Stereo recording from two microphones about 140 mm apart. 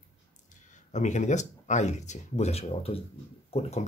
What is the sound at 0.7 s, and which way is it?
Speech, 60° left (ahead or behind).